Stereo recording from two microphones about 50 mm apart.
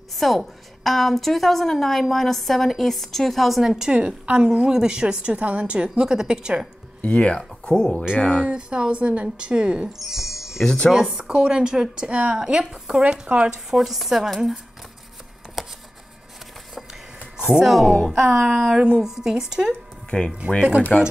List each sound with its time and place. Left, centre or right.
0.1 s a woman's voice: centre
3.9 s a woman's voice: right
7.0 s speech: left
7.6 s speech: centre
8.2 s speech: left
8.5 s a woman's voice: centre
9.9 s music: centre
10.6 s speech: centre
11.1 s a woman's voice: centre
13.5 s a woman's voice: centre
15.6 s a sound: centre
17.5 s a woman's voice: centre
18.1 s a woman's voice: centre
20.1 s speech: centre